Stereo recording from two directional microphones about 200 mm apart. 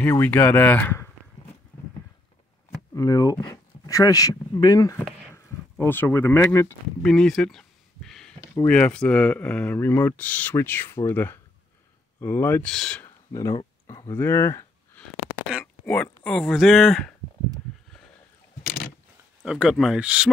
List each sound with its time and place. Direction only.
0.1 s speech: 10° left (ahead or behind)
2.9 s speech: 15° left (ahead or behind)
7.0 s a sound: centre (ahead or behind)
8.4 s speech: 10° left (ahead or behind)
13.3 s speech: 15° left (ahead or behind); by 17.1 s centre (ahead or behind)
19.4 s speech: 5° right (ahead or behind)